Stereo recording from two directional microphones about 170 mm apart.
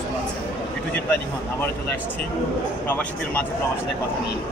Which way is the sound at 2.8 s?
10° left (ahead or behind).